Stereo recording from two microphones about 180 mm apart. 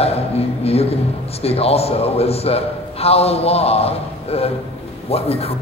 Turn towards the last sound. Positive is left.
turn(degrees=35)  # may be behind; listen again after turning